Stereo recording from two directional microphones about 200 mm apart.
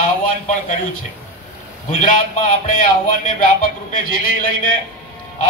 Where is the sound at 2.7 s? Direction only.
40° left (ahead or behind).